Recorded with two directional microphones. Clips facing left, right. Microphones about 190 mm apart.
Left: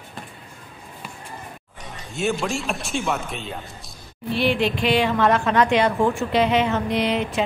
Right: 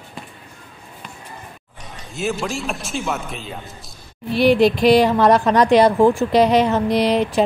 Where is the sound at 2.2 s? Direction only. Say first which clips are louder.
Even; centre (ahead or behind).